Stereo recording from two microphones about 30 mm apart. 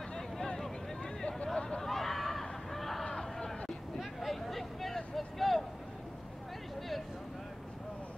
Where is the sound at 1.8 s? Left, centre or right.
Centre.